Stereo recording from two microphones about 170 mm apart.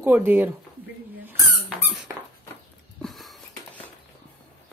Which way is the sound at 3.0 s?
Centre (ahead or behind).